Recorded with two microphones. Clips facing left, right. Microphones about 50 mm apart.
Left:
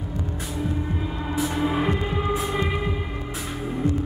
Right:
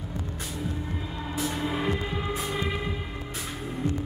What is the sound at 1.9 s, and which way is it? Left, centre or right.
Hum, centre.